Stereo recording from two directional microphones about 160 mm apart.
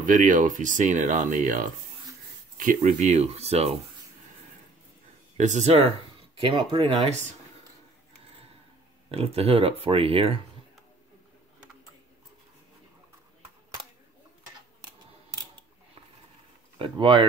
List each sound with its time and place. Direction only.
0.0 s speech: 55° right (ahead or behind)
5.4 s speech: 45° right (ahead or behind)
9.1 s speech: 35° right (ahead or behind)
16.7 s speech: 35° right (ahead or behind)